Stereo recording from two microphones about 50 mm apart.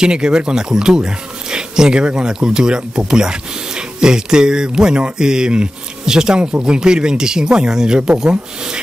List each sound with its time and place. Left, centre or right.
0.0 s speech: centre